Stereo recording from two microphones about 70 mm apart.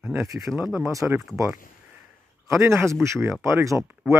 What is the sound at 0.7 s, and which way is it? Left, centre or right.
Speech, right.